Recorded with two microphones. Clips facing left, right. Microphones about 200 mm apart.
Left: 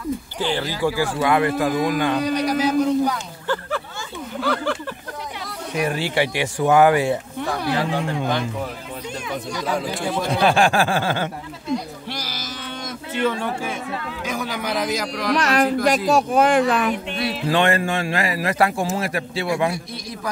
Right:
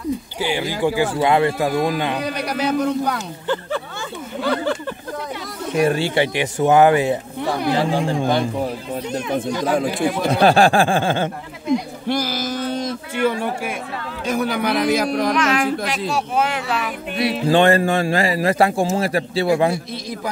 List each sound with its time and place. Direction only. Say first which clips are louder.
0.4 s speech: right 1 dB; 10° right (ahead or behind)
2.3 s a man's voice: left 2 dB; 60° right (ahead or behind)
5.9 s speech: right 1 dB; 25° right (ahead or behind)
9.3 s speech: right 5 dB; 50° right (ahead or behind)
10.4 s speech: right 4 dB; 35° right (ahead or behind)
12.1 s a sound: right 14 dB; 50° right (ahead or behind)
13.2 s speech: right 2 dB; 10° right (ahead or behind)
14.2 s a man's voice: right 8 dB; 55° right (ahead or behind)
15.3 s speech: even; 40° left (ahead or behind)
17.2 s speech: right 6 dB; 30° right (ahead or behind)